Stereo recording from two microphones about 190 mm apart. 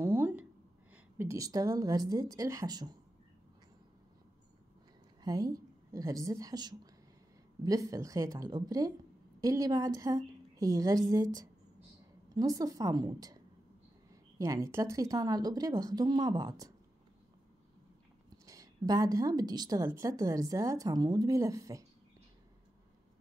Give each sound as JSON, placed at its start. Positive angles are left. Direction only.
{"t": 0.0, "sound": "a sound", "side_deg": -10}
{"t": 0.9, "sound": "a woman's voice", "side_deg": -10}
{"t": 5.2, "sound": "a woman's voice", "side_deg": -20}
{"t": 14.4, "sound": "a woman's voice", "side_deg": -15}
{"t": 18.4, "sound": "a woman's voice", "side_deg": -15}